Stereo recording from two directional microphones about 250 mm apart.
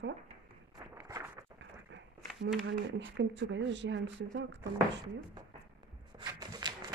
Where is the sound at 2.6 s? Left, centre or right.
Right.